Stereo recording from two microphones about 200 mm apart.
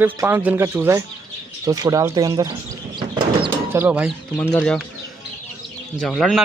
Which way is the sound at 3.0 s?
25° right (ahead or behind).